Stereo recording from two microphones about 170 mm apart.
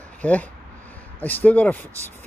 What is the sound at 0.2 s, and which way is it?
Speech, 10° left (ahead or behind).